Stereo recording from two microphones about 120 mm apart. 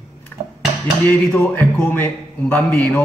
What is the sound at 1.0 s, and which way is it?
A man's voice, 20° left (ahead or behind).